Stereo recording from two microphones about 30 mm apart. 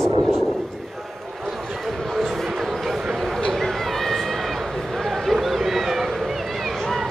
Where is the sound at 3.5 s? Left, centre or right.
Centre.